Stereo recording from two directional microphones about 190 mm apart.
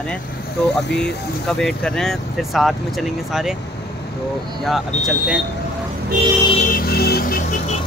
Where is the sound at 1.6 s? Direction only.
5° left (ahead or behind).